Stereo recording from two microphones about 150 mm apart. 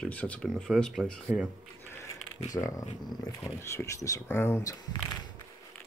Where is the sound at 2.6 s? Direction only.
15° left (ahead or behind).